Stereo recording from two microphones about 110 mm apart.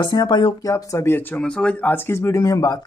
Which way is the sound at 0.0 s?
45° left (ahead or behind).